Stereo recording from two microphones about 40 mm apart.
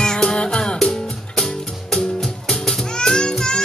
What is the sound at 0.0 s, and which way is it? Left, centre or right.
Music, centre.